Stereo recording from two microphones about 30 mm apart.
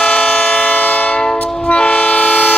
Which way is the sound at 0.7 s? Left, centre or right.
Left.